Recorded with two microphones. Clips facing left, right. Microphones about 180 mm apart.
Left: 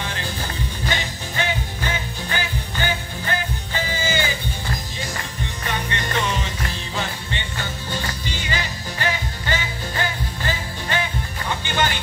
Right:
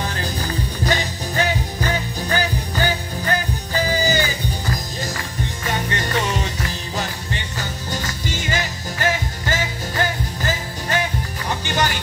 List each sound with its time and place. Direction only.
0.0 s music: 40° right (ahead or behind)
5.7 s music: 45° right (ahead or behind)
7.5 s music: 40° right (ahead or behind)